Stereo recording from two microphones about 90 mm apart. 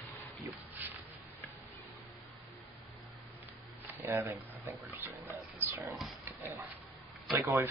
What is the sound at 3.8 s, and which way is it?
Speech, 20° right (ahead or behind).